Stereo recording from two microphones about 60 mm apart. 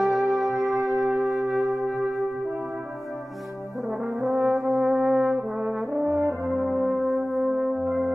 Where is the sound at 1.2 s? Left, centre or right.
Right.